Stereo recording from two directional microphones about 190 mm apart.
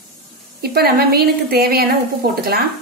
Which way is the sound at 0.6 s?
55° right (ahead or behind).